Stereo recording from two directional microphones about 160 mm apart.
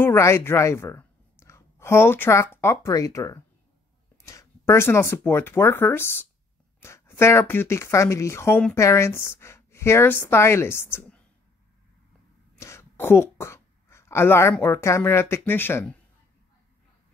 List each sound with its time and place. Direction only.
0.0 s a woman's voice: 15° left (ahead or behind)
12.5 s speech: 15° left (ahead or behind)